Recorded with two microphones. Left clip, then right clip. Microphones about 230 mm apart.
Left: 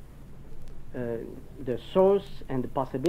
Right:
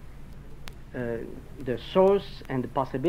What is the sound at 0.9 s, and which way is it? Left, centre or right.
Speech, right.